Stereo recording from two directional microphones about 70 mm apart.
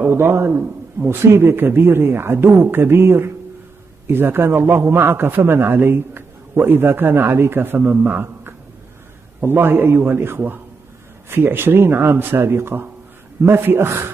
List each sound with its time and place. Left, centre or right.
0.0 s a man's voice: right